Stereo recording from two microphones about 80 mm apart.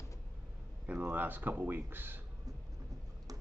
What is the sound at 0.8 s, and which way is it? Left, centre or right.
Speech, centre.